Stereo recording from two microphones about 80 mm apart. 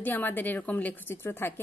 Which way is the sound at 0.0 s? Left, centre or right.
Left.